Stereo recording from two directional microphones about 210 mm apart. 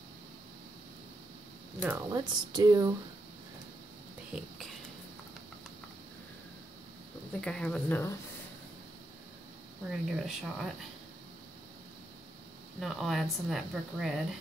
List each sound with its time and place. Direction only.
1.8 s speech: 15° right (ahead or behind)
4.3 s speech: centre (ahead or behind)
7.3 s speech: 5° left (ahead or behind)
9.8 s speech: centre (ahead or behind)
12.8 s speech: centre (ahead or behind)